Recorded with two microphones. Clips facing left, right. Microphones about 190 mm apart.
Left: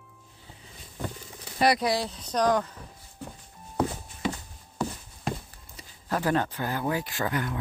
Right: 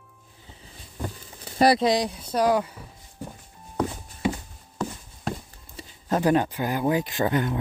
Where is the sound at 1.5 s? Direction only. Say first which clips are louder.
Right 5 dB; 30° right (ahead or behind).